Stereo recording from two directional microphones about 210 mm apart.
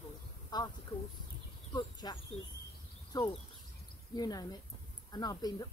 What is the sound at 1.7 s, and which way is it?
Speech, 20° left (ahead or behind).